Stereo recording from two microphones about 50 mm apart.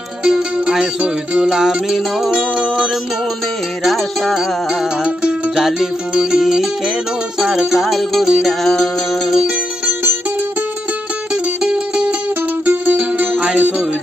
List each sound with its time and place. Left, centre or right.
0.2 s music: centre
3.8 s music: centre
5.6 s music: centre
11.6 s music: centre
12.6 s music: right